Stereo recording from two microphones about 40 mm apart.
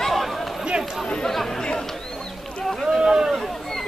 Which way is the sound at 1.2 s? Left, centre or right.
Centre.